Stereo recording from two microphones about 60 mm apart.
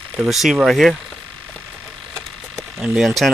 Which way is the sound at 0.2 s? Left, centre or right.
Centre.